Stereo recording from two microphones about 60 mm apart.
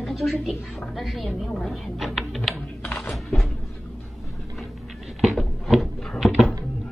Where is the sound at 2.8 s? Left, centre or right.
Left.